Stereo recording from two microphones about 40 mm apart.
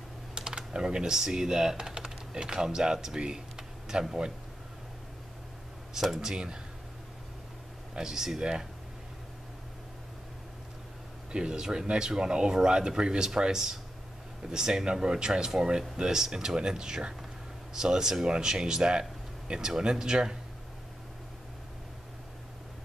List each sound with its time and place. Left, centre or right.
0.4 s speech: centre
5.9 s speech: centre
7.9 s speech: centre
11.3 s speech: centre